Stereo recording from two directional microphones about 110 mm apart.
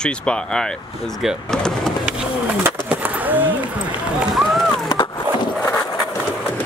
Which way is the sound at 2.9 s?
15° right (ahead or behind).